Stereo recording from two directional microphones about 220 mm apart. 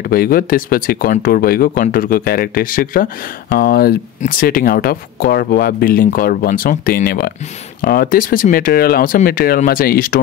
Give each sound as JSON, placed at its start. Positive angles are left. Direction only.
{"t": 0.1, "sound": "speech", "side_deg": 40}